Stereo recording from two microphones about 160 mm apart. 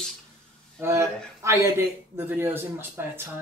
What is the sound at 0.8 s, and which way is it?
Speech, 15° right (ahead or behind).